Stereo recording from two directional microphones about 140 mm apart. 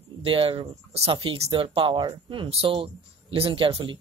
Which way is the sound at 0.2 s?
40° right (ahead or behind).